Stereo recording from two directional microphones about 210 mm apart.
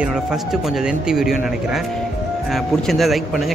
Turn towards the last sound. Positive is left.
turn(degrees=0)  # may be behind; listen again after turning